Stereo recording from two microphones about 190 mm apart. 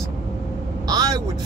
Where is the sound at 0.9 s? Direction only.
20° right (ahead or behind).